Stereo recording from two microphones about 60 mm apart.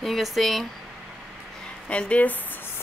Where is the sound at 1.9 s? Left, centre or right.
Left.